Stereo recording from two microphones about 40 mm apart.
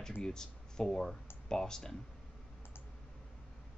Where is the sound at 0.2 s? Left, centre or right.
Centre.